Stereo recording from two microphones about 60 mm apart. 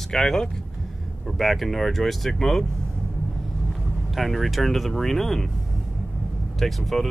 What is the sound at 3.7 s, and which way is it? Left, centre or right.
Speech, centre.